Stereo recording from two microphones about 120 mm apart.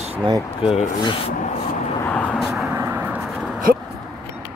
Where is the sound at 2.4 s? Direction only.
5° right (ahead or behind).